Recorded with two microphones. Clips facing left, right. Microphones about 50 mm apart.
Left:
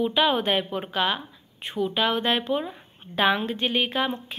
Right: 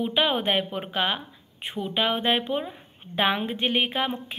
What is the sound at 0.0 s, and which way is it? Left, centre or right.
A woman's voice, right.